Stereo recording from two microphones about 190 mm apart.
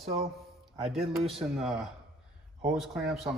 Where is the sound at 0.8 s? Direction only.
Centre (ahead or behind).